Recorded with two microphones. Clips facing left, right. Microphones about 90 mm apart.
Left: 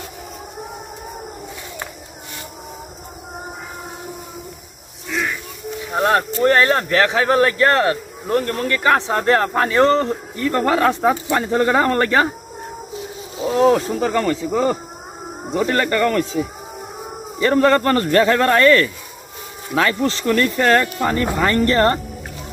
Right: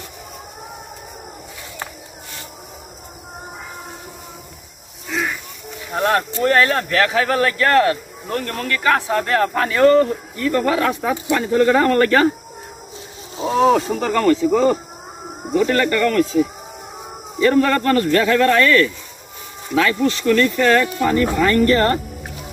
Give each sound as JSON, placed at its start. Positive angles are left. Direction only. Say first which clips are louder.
{"t": 5.9, "sound": "speech", "louder": "left 1 dB", "side_deg": 20}
{"t": 13.7, "sound": "speech", "louder": "even", "side_deg": 5}
{"t": 15.5, "sound": "speech", "louder": "right 2 dB", "side_deg": 30}
{"t": 17.4, "sound": "speech", "louder": "left 1 dB", "side_deg": 30}